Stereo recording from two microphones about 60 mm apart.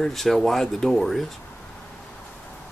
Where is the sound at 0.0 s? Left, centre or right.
Centre.